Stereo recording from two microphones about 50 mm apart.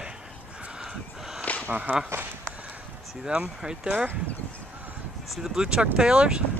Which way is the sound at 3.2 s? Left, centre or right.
Centre.